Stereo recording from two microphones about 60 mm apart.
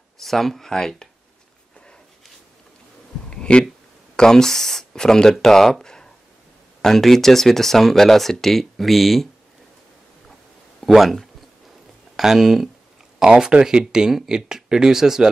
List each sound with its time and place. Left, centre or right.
0.2 s speech: centre
3.3 s a sound: centre
4.2 s speech: centre
10.8 s speech: centre
13.2 s speech: centre